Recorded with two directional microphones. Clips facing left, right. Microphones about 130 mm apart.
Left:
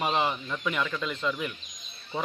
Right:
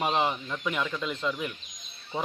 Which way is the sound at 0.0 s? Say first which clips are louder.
Even; centre (ahead or behind).